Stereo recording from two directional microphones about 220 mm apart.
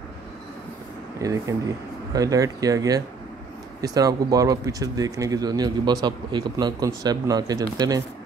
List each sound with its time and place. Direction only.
1.2 s speech: 15° right (ahead or behind)